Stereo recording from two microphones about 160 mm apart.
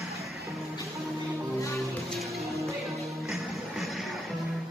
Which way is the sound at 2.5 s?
20° right (ahead or behind).